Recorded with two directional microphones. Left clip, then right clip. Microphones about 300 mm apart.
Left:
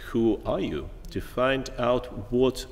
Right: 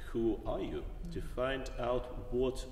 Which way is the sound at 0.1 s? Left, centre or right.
Left.